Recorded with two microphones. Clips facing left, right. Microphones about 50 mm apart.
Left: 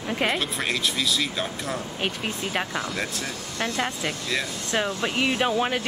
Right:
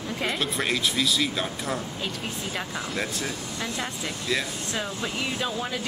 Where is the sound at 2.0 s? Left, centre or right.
Left.